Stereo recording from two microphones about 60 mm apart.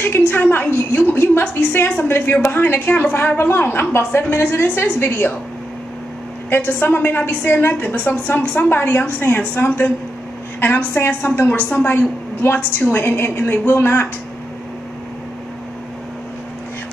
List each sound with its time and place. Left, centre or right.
0.3 s a woman's voice: left
6.5 s a woman's voice: left
12.4 s a woman's voice: left